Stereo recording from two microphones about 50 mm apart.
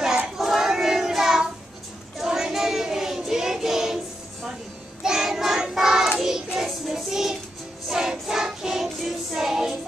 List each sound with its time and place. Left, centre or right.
0.4 s child singing: centre
5.0 s child singing: centre
7.9 s music: centre